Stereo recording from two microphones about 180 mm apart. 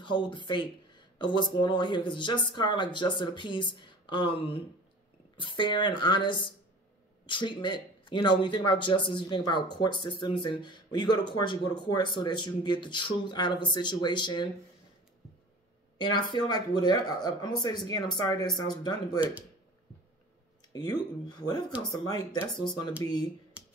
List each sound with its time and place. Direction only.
0.0 s speech: 25° left (ahead or behind)
16.0 s speech: 25° left (ahead or behind)
20.7 s speech: 20° left (ahead or behind)
23.6 s finger snapping: 5° right (ahead or behind)